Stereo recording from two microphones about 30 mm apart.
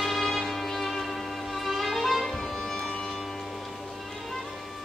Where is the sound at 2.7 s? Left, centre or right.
Left.